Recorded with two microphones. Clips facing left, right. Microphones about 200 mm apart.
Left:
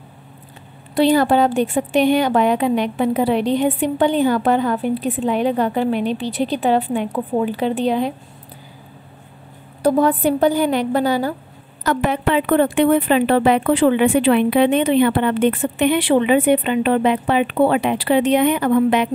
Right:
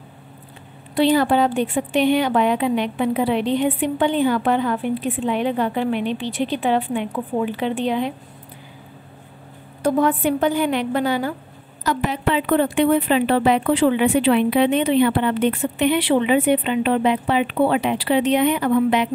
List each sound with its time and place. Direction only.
0.9 s a woman's voice: 40° left (ahead or behind)
9.8 s a woman's voice: 35° left (ahead or behind)
11.8 s a woman's voice: 55° left (ahead or behind)